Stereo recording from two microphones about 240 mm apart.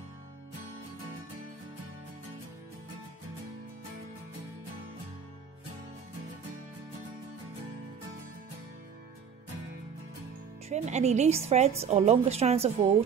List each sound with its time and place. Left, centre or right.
10.7 s a woman's voice: right